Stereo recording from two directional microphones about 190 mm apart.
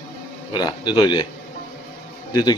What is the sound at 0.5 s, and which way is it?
Speech, 25° left (ahead or behind).